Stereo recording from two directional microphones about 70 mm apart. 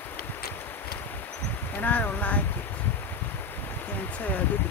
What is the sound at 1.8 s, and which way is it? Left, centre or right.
Speech, left.